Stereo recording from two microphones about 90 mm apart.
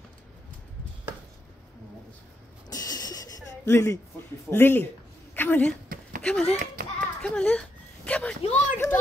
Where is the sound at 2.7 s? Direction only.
45° left (ahead or behind).